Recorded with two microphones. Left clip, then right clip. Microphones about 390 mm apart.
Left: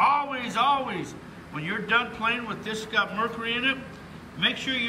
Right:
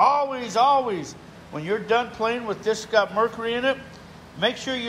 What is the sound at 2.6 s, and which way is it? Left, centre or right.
Speech, right.